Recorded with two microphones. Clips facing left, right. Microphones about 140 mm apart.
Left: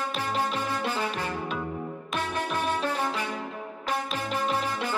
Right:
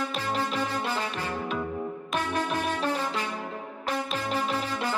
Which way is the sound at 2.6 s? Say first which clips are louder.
Even; 35° right (ahead or behind).